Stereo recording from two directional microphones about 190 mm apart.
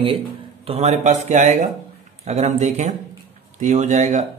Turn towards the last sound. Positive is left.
turn(degrees=-40)  # may be behind; listen again after turning